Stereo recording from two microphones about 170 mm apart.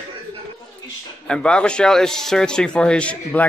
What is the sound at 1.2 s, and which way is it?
A man's voice, 5° left (ahead or behind).